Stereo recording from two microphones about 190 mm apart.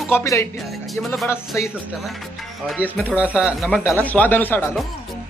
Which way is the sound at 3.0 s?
10° right (ahead or behind).